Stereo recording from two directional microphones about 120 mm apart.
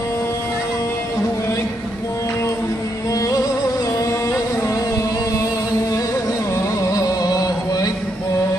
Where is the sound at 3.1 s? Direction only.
30° left (ahead or behind).